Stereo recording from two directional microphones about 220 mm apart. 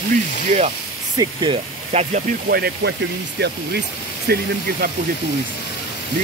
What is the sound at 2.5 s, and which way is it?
Speech, 45° right (ahead or behind).